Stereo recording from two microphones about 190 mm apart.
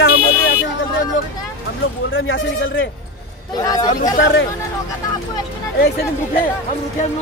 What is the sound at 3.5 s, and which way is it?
Speech, 20° left (ahead or behind).